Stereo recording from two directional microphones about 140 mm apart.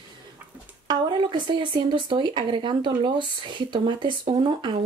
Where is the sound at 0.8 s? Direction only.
35° right (ahead or behind).